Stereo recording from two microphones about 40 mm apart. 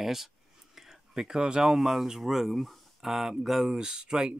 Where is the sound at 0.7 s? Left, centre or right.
Centre.